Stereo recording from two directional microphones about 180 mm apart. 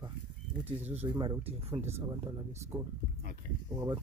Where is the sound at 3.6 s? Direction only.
20° right (ahead or behind).